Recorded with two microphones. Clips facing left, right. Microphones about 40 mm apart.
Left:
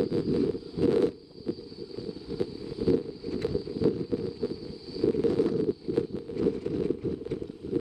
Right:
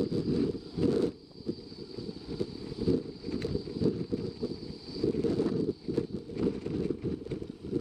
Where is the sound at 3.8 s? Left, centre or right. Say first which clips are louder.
Left 3 dB; left.